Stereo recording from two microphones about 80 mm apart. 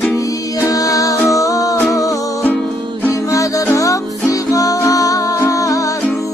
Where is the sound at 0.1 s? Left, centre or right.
Left.